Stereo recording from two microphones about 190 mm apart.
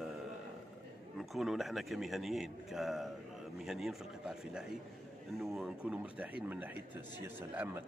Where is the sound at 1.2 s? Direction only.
Centre (ahead or behind).